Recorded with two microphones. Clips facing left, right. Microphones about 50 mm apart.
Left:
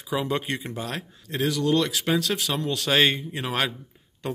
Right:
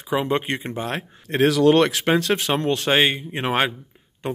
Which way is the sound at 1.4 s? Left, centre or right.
Right.